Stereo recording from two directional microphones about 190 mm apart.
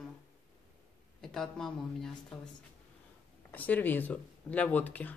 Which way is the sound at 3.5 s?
10° left (ahead or behind).